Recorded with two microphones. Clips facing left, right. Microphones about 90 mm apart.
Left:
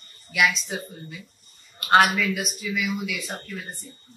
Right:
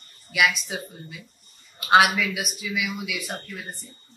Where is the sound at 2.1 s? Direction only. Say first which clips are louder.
Left 1 dB; 5° right (ahead or behind).